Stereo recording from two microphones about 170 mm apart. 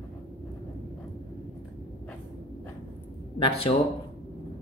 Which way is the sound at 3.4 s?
35° left (ahead or behind).